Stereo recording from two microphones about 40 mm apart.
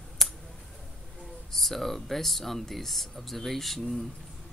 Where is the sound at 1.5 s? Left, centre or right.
Centre.